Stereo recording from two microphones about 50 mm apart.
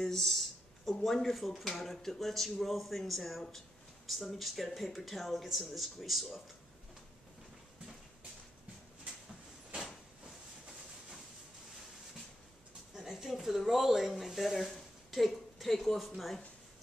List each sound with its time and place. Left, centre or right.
0.0 s speech: centre
12.9 s speech: centre